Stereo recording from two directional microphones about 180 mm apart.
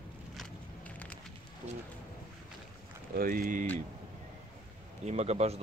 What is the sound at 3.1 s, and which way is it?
Speech, 50° right (ahead or behind).